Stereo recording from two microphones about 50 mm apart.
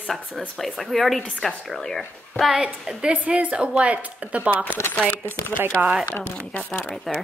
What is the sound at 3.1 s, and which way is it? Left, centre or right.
Speech, right.